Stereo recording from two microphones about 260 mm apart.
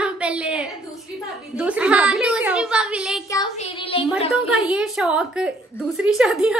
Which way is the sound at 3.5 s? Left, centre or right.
Left.